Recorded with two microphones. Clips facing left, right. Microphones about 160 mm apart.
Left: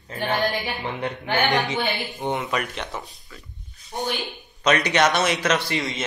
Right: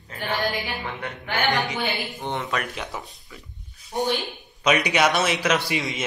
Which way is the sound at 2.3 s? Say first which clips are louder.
Left 3 dB; centre (ahead or behind).